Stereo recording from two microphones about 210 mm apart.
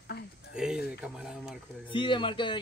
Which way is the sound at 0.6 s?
5° right (ahead or behind).